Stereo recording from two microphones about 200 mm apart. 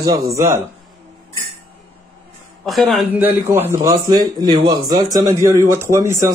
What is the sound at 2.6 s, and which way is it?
A man's voice, centre (ahead or behind).